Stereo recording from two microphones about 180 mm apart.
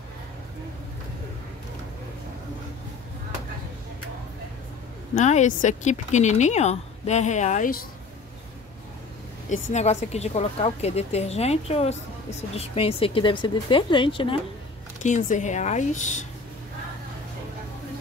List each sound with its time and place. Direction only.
5.1 s speech: 40° left (ahead or behind)
9.7 s speech: 40° left (ahead or behind)
15.0 s a woman's voice: 45° left (ahead or behind)